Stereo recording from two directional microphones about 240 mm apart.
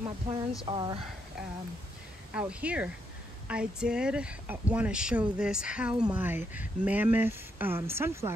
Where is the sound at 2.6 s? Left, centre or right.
Centre.